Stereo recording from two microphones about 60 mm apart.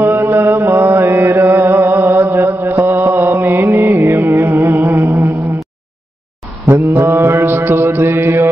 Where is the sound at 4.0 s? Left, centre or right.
Right.